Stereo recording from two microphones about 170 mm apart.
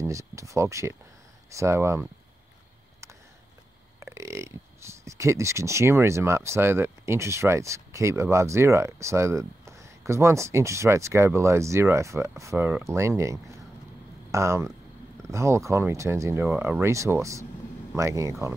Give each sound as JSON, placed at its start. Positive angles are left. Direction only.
{"t": 0.0, "sound": "speech", "side_deg": -15}
{"t": 4.0, "sound": "speech", "side_deg": -15}